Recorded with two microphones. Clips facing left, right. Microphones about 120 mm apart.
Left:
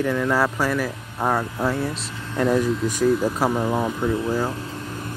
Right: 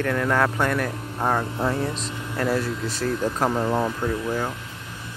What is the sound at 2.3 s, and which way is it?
Speech, 15° left (ahead or behind).